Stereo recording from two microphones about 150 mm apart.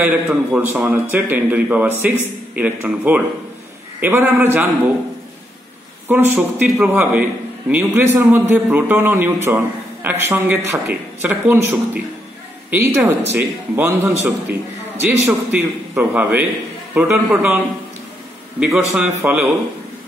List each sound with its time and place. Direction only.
0.0 s a man's voice: 10° right (ahead or behind)
6.0 s a man's voice: 15° right (ahead or behind)
18.6 s a man's voice: 5° right (ahead or behind)